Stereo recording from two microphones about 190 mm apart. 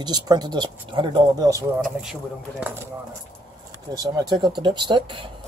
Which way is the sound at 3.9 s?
20° right (ahead or behind).